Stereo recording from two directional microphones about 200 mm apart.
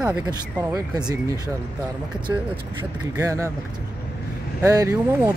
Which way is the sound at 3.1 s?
15° right (ahead or behind).